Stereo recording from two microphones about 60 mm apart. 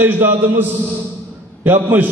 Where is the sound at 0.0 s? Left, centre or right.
Right.